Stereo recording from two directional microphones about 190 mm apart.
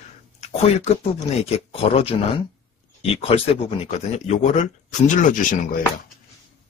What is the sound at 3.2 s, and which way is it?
Speech, 30° left (ahead or behind).